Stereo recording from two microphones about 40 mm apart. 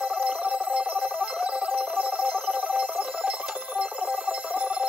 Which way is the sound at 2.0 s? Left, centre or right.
Right.